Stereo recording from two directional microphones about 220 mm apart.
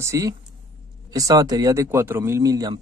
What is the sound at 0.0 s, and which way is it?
Speech, 15° right (ahead or behind).